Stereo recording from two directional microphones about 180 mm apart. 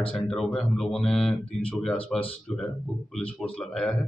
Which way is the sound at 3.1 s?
5° left (ahead or behind).